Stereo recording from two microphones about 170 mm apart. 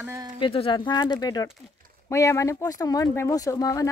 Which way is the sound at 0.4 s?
30° left (ahead or behind).